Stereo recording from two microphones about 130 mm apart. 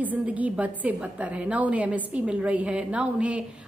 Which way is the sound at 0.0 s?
10° right (ahead or behind).